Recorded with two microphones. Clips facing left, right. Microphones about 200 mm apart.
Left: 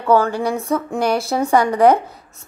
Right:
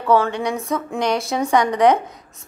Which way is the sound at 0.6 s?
30° left (ahead or behind).